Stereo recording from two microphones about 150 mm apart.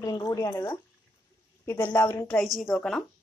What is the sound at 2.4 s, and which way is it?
Speech, centre (ahead or behind).